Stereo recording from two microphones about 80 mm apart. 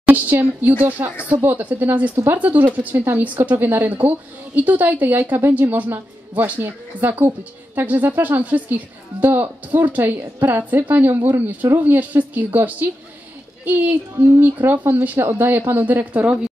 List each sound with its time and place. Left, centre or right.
0.0 s speech: right